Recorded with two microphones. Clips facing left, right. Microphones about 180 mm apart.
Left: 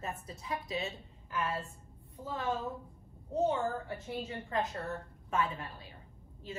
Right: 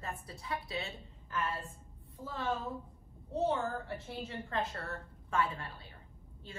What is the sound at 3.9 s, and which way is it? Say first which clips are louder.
A woman's voice: left 2 dB; 15° left (ahead or behind).